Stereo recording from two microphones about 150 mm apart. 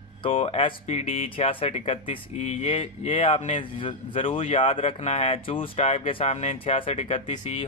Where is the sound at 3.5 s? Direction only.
35° left (ahead or behind).